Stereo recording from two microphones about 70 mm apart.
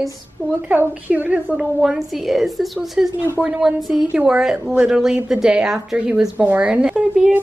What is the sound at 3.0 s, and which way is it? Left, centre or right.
Speech, centre.